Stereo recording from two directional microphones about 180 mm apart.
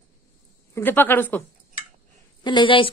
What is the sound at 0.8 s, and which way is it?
Speech, 10° left (ahead or behind).